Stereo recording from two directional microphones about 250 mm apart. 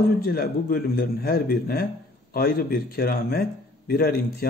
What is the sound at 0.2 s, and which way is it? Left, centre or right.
A man's voice, left.